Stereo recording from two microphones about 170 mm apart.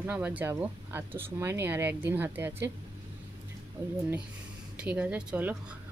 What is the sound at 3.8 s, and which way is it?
Speech, 15° right (ahead or behind).